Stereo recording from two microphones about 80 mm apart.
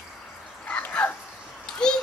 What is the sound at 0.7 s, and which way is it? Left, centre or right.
Dog, centre.